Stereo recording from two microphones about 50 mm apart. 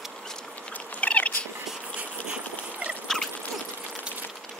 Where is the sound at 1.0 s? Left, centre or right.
Left.